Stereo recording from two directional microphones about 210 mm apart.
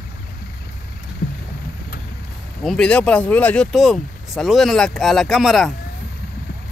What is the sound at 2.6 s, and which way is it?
Speech, 5° left (ahead or behind).